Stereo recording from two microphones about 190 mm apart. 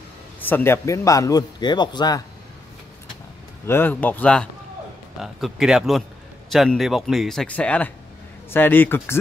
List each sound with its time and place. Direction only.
0.4 s a man's voice: 10° left (ahead or behind)
3.6 s a man's voice: 10° left (ahead or behind)